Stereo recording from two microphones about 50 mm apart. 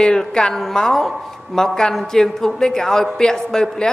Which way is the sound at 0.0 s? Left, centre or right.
Centre.